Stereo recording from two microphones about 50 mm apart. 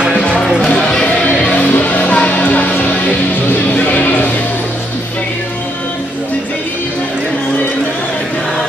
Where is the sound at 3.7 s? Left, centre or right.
Left.